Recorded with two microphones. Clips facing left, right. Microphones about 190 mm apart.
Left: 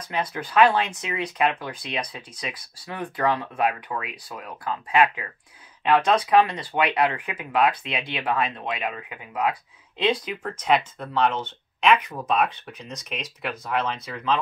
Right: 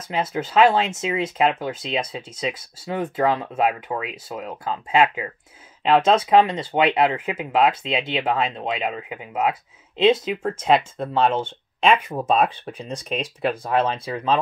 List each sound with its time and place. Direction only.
0.0 s speech: 25° right (ahead or behind)
13.6 s speech: 50° right (ahead or behind)